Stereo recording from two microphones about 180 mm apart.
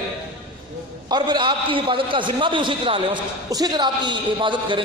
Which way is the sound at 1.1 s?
25° right (ahead or behind).